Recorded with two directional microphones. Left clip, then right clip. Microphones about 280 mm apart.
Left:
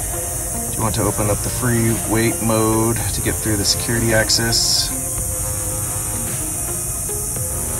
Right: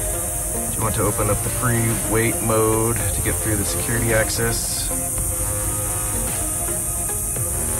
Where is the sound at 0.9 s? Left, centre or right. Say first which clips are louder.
Left 1 dB; centre.